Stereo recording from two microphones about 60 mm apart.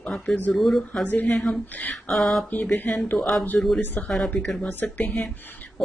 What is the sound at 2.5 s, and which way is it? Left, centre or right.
Speech, left.